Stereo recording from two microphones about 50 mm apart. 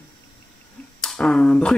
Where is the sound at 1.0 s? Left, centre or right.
Centre.